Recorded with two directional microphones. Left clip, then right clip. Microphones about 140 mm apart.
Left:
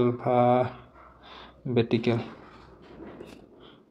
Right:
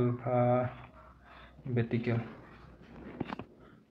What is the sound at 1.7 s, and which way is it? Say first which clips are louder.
Speech: left 9 dB; 40° left (ahead or behind).